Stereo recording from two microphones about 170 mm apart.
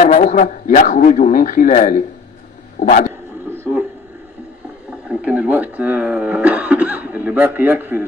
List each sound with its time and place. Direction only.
0.0 s a man's voice: 50° left (ahead or behind)
5.2 s speech: 10° right (ahead or behind)